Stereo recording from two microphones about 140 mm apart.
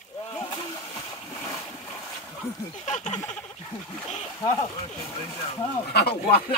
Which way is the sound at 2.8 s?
55° left (ahead or behind).